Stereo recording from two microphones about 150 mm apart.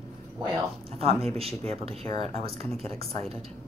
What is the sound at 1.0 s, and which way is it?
A woman's voice, 40° right (ahead or behind).